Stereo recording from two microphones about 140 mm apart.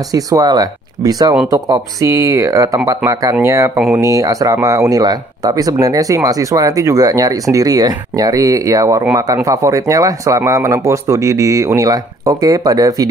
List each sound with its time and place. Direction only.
0.1 s speech: 25° right (ahead or behind)